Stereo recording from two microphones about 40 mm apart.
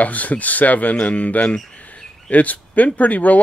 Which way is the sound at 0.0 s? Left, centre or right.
Left.